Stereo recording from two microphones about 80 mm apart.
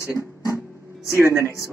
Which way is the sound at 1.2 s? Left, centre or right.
Right.